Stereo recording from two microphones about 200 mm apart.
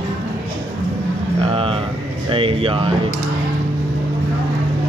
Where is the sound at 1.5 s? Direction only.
25° right (ahead or behind).